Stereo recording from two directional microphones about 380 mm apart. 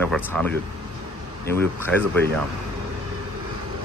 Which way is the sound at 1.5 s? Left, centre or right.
Centre.